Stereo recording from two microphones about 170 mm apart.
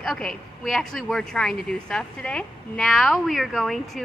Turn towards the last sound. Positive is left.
turn(degrees=0)  # may be behind; listen again after turning